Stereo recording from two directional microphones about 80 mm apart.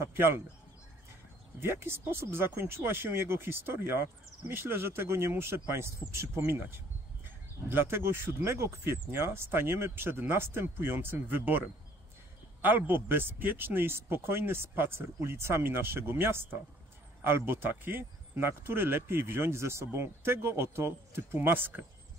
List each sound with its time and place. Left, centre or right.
1.6 s speech: right